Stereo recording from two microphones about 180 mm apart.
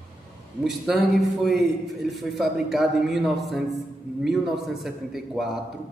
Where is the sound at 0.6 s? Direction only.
Centre (ahead or behind).